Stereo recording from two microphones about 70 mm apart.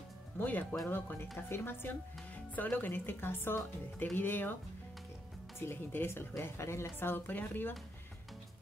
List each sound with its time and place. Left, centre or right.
0.4 s speech: left
5.7 s speech: left